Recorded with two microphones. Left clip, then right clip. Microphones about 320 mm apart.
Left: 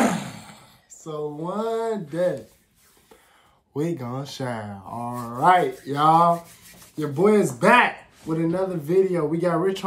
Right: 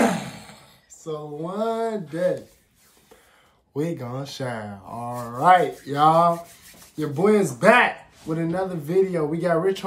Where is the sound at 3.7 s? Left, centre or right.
Centre.